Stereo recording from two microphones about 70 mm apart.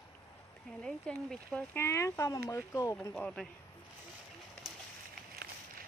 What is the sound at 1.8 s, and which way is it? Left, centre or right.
Speech, left.